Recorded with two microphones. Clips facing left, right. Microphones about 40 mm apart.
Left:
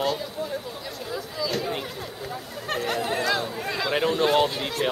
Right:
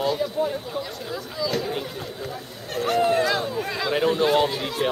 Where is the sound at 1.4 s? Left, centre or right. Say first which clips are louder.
Right 2 dB; centre.